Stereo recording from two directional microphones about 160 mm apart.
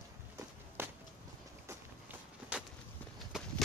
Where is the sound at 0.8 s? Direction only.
15° right (ahead or behind).